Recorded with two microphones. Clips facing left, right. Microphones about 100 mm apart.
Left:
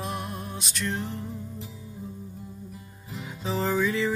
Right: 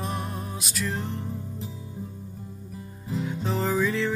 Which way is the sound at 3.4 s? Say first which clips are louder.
Left 1 dB; centre (ahead or behind).